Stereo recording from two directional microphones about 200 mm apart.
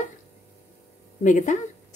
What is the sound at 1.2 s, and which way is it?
Speech, 40° left (ahead or behind).